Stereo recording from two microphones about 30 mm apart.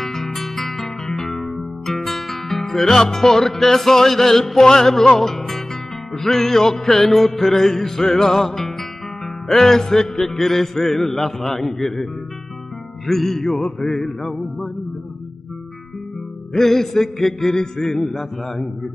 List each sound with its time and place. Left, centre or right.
0.0 s guitar: centre
2.8 s music: centre
16.5 s music: centre
17.8 s music: centre